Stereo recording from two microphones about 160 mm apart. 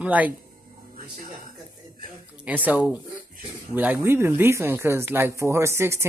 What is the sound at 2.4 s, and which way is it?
Speech, 10° right (ahead or behind).